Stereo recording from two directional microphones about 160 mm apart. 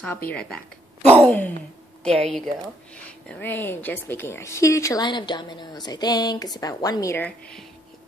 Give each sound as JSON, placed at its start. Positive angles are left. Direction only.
{"t": 0.0, "sound": "a woman's voice", "side_deg": 10}